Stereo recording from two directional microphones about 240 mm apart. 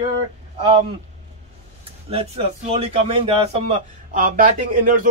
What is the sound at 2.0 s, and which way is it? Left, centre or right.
A man's voice, right.